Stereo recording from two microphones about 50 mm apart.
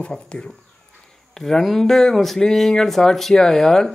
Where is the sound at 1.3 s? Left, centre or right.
Centre.